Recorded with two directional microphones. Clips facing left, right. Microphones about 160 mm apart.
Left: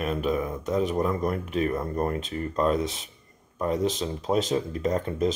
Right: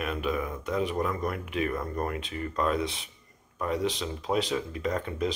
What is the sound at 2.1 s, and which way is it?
Speech, 40° left (ahead or behind).